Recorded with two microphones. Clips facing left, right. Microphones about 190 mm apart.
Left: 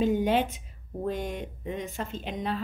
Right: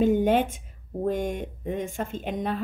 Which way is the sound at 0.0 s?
50° right (ahead or behind).